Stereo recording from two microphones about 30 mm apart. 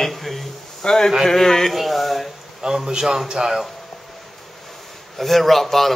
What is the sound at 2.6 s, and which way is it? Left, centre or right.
A man's voice, right.